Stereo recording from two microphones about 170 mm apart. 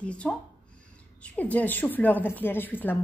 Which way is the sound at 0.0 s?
5° left (ahead or behind).